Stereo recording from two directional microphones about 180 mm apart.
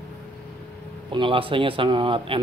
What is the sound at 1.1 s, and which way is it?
Speech, 30° right (ahead or behind).